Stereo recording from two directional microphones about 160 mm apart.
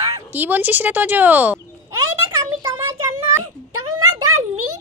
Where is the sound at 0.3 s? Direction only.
10° right (ahead or behind).